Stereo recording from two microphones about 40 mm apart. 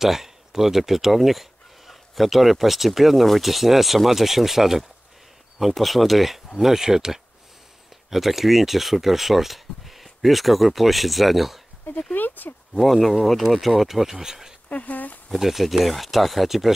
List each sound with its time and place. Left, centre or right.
0.0 s speech: centre
12.1 s a sound: left
12.7 s speech: centre
14.7 s speech: left
15.3 s speech: centre